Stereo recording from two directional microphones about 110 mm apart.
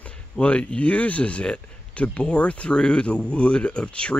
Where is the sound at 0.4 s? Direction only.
10° left (ahead or behind).